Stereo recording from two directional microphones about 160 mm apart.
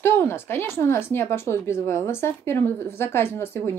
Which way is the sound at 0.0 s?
15° left (ahead or behind).